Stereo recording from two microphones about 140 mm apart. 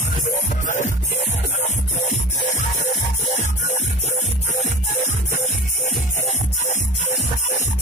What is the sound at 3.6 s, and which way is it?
Music, 55° left (ahead or behind).